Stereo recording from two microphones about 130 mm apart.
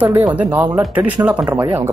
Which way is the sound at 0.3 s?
15° right (ahead or behind).